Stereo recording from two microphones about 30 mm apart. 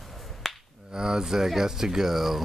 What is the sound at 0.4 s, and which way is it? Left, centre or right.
Finger snapping, centre.